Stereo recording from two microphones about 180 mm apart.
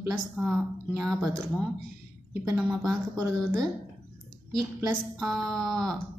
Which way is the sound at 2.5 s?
15° right (ahead or behind).